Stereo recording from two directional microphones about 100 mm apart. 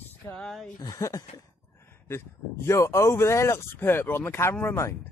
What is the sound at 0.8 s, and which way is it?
Speech, 35° left (ahead or behind).